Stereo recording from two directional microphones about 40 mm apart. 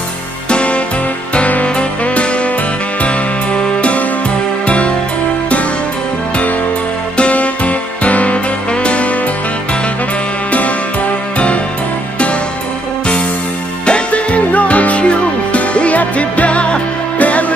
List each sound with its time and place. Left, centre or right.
0.5 s music: left
7.2 s music: left
11.3 s music: left
13.8 s music: left